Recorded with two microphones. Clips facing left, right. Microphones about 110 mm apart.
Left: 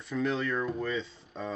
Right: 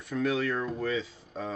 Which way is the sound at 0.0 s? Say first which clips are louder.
Right 2 dB; centre (ahead or behind).